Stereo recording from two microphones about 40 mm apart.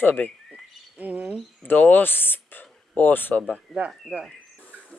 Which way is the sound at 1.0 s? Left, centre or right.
Right.